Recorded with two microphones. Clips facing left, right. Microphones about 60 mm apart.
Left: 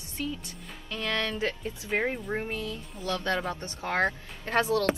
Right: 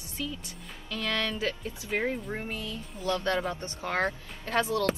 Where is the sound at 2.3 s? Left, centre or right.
Centre.